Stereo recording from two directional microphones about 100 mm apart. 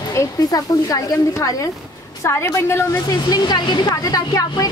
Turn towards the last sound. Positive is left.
turn(degrees=40)  # may be behind; listen again after turning